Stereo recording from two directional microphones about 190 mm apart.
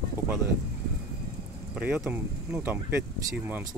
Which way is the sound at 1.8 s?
5° right (ahead or behind).